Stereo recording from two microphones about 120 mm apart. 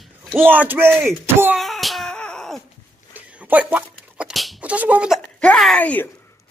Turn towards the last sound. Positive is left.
turn(degrees=15)  # may be behind; listen again after turning